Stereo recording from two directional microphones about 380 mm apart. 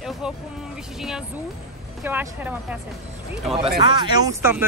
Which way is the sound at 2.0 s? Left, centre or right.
Centre.